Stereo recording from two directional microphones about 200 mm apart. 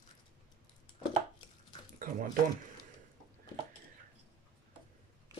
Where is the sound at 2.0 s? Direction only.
45° right (ahead or behind).